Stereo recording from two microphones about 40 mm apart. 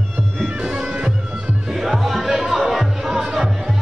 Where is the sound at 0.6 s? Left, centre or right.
Centre.